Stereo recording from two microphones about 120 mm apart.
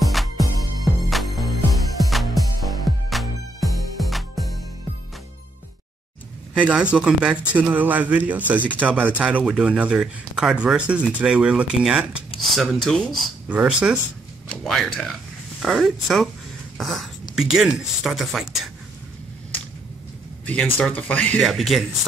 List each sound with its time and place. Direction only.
0.0 s music: centre (ahead or behind)
6.5 s speech: 10° right (ahead or behind)
12.4 s speech: centre (ahead or behind)
13.5 s speech: 10° right (ahead or behind)
14.6 s speech: centre (ahead or behind)
20.4 s speech: 15° left (ahead or behind)
21.4 s speech: centre (ahead or behind)